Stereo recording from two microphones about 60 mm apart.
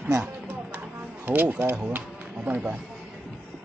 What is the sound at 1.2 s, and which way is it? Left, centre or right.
Speech, right.